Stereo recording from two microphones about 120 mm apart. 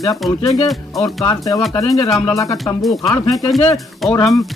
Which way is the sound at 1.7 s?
30° left (ahead or behind).